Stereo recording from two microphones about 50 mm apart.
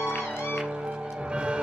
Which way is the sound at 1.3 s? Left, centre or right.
Right.